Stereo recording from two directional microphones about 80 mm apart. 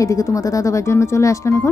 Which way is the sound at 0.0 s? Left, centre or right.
Left.